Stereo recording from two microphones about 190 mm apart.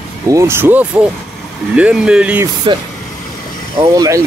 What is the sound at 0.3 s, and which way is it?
Speech, 15° right (ahead or behind).